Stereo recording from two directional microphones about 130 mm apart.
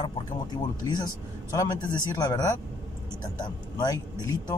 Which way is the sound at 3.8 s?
30° left (ahead or behind).